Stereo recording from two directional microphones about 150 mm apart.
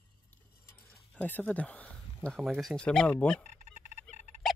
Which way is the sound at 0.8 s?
10° left (ahead or behind).